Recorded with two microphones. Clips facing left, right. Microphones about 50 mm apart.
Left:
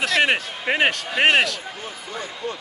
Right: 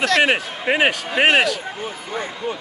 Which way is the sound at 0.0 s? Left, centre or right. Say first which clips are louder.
Right 3 dB; centre.